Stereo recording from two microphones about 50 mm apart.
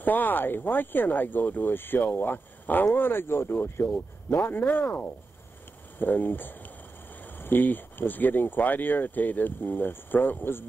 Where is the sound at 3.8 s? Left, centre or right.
Centre.